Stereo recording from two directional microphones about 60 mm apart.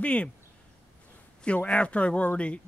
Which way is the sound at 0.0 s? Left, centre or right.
Left.